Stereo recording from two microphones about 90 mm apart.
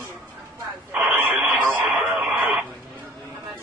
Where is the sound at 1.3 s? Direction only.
15° right (ahead or behind).